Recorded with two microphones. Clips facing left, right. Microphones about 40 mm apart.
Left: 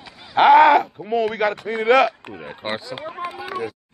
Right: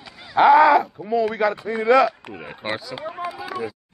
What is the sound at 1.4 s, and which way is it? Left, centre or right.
Speech, left.